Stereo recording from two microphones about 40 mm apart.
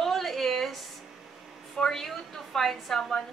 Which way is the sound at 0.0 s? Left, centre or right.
Centre.